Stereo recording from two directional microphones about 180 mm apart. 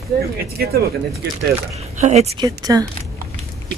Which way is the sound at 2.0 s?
40° right (ahead or behind).